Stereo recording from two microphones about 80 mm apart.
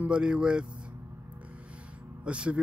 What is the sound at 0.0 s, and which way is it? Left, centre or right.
Speech, centre.